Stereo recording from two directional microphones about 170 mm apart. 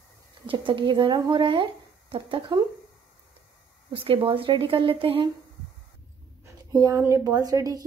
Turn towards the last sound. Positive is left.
turn(degrees=-20)  # may be behind; listen again after turning